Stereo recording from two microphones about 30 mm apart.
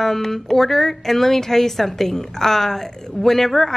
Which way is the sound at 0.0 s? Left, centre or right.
Centre.